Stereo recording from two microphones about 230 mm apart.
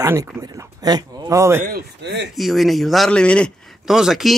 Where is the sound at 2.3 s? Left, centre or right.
Centre.